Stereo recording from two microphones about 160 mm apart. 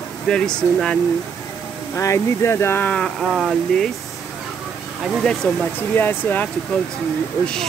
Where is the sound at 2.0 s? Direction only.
20° left (ahead or behind); by 3.9 s centre (ahead or behind).